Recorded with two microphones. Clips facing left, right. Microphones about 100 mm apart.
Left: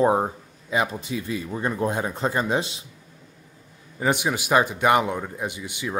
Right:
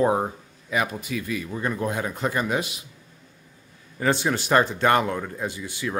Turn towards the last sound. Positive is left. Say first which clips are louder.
# right 1 dB
turn(degrees=20)  # may be behind; listen again after turning